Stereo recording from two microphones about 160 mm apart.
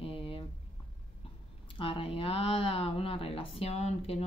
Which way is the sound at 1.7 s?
35° left (ahead or behind).